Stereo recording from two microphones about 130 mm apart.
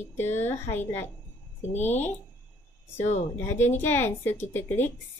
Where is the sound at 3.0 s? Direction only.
60° left (ahead or behind).